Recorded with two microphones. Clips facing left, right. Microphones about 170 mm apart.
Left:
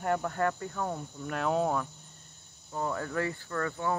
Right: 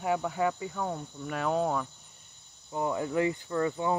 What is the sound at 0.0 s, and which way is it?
Speech, 5° right (ahead or behind).